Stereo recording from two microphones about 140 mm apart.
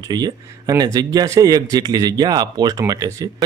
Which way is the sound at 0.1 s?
30° right (ahead or behind).